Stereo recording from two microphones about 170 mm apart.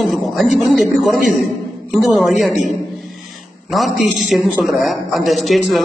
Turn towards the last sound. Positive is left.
turn(degrees=0)  # may be behind; listen again after turning